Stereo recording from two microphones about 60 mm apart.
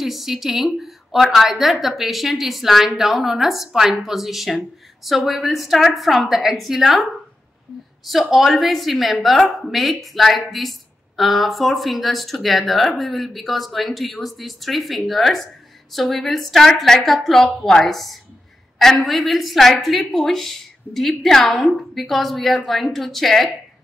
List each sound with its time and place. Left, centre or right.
0.0 s a woman's voice: centre